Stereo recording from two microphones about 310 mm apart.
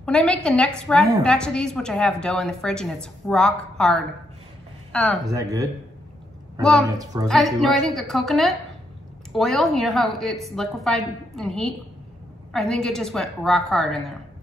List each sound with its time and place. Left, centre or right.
0.0 s a woman's voice: centre
5.2 s speech: centre
6.6 s a woman's voice: centre
6.9 s speech: centre
7.2 s a woman's voice: centre